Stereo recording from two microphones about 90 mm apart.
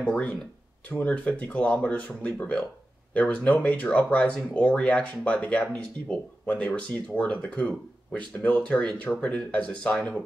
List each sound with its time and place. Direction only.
0.0 s speech: 15° left (ahead or behind)